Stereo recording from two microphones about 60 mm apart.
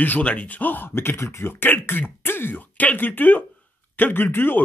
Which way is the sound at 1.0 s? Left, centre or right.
Left.